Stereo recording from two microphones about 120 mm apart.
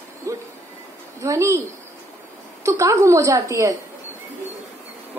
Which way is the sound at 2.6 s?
25° right (ahead or behind).